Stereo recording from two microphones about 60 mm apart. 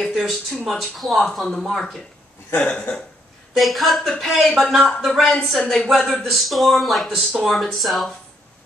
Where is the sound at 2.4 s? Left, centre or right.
Left.